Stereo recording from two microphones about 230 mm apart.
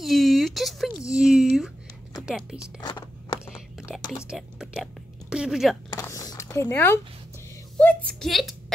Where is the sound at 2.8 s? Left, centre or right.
Centre.